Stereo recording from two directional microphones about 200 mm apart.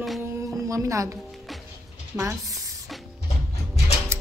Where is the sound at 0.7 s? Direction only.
15° right (ahead or behind).